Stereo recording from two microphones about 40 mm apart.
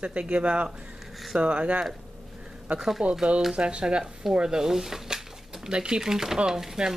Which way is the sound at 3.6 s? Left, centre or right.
Right.